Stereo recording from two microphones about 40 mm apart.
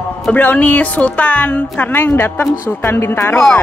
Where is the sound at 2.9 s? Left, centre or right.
Left.